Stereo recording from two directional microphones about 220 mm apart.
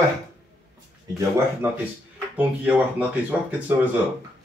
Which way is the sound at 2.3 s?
5° right (ahead or behind).